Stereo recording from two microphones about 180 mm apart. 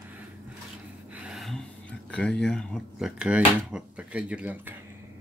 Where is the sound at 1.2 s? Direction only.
Centre (ahead or behind).